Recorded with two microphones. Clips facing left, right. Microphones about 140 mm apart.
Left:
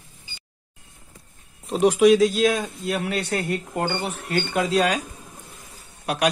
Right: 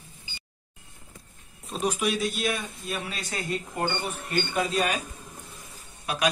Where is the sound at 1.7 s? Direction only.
85° left.